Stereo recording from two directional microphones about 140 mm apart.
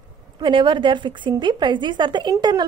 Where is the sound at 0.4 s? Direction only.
35° right (ahead or behind).